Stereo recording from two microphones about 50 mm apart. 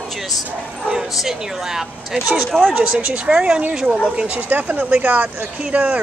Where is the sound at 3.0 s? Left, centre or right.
Right.